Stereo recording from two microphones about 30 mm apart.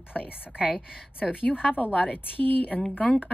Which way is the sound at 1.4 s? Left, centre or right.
Left.